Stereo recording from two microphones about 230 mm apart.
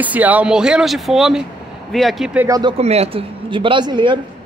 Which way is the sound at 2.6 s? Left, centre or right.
Right.